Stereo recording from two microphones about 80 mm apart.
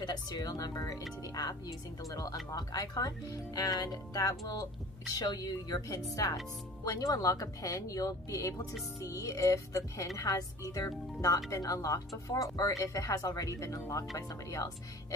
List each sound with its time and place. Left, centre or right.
0.0 s a woman's voice: left